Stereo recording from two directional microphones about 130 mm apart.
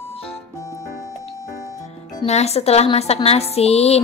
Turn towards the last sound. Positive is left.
turn(degrees=55)  # may be behind; listen again after turning